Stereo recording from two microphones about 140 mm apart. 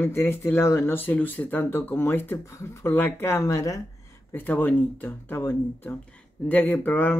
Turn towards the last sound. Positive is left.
turn(degrees=10)  # may be behind; listen again after turning